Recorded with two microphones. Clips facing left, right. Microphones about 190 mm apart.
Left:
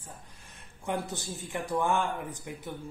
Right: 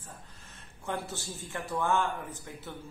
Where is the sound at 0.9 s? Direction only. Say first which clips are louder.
Left 3 dB; 15° left (ahead or behind).